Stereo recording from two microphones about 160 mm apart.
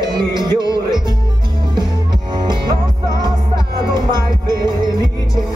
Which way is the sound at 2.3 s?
25° right (ahead or behind).